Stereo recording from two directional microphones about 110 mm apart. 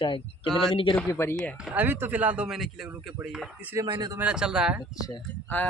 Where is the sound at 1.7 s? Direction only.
15° right (ahead or behind).